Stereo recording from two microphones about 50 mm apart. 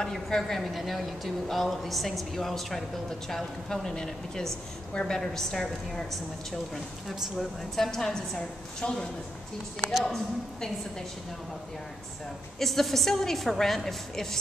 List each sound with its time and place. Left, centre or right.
0.0 s speech: centre
7.7 s speech: centre
12.5 s speech: centre